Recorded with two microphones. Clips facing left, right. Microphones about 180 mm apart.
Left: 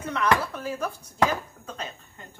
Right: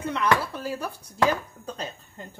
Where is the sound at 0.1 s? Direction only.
30° right (ahead or behind).